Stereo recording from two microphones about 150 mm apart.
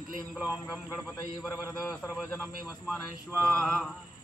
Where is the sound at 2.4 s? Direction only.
5° right (ahead or behind).